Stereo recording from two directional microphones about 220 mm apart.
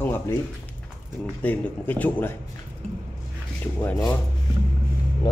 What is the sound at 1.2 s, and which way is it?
Speech, 5° left (ahead or behind).